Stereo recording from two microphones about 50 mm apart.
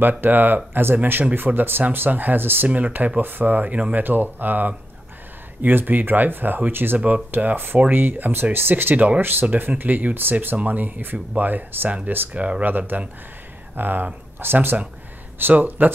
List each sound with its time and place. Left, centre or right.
0.2 s speech: right
2.7 s speech: right
8.9 s speech: right
9.2 s speech: right